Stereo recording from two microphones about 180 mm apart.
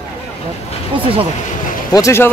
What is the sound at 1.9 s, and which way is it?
Speech, 15° left (ahead or behind).